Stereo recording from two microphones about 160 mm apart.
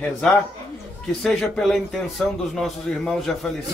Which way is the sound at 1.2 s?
5° left (ahead or behind).